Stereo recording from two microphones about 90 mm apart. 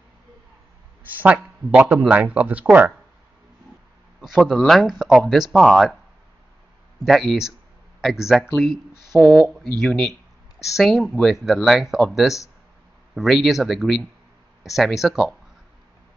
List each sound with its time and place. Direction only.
1.1 s speech: 15° right (ahead or behind)
4.2 s speech: 5° right (ahead or behind)
7.1 s speech: centre (ahead or behind)
9.2 s speech: 10° left (ahead or behind)